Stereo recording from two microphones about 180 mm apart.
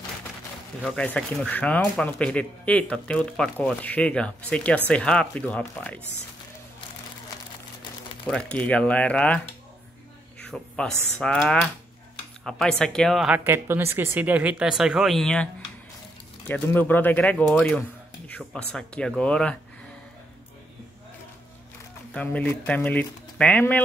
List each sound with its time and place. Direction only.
0.8 s speech: 5° left (ahead or behind)
8.3 s speech: 5° left (ahead or behind)
10.4 s speech: 5° left (ahead or behind)
16.4 s speech: 10° left (ahead or behind)
22.1 s speech: 5° left (ahead or behind)